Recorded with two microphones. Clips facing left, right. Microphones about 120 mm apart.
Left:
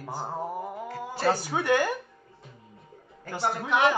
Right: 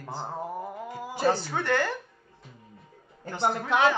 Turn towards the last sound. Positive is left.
turn(degrees=10)  # may be behind; listen again after turning